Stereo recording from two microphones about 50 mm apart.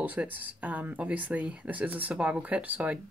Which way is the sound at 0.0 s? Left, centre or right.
Right.